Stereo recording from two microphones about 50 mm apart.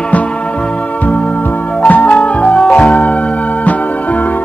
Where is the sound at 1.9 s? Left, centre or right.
Left.